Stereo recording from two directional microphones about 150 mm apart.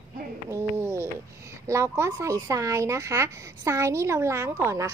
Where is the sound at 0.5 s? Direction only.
20° right (ahead or behind).